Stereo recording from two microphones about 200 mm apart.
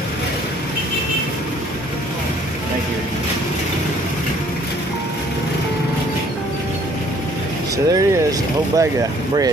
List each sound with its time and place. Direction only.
7.7 s speech: 15° right (ahead or behind)